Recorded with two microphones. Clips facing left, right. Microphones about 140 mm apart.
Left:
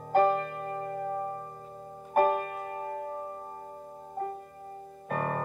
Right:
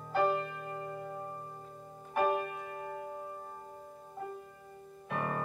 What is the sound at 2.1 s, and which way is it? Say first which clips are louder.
Music: left 5 dB; 50° left (ahead or behind).